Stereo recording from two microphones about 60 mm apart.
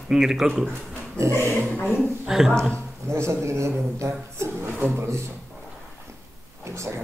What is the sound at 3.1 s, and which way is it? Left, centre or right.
A man's voice, right.